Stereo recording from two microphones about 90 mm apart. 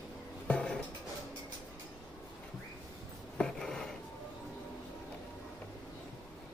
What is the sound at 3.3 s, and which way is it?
Writing, 5° left (ahead or behind).